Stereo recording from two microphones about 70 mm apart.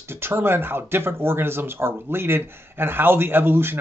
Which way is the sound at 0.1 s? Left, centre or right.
Right.